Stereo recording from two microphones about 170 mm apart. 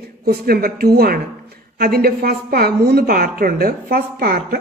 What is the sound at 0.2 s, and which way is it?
A woman's voice, 60° right (ahead or behind).